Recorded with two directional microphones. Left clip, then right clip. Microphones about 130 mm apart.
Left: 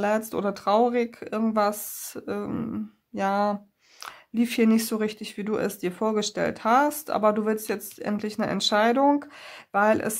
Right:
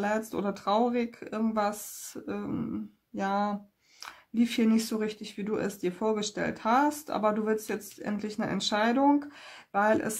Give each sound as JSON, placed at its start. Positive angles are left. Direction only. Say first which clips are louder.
{"t": 0.0, "sound": "speech", "louder": "left 5 dB", "side_deg": 50}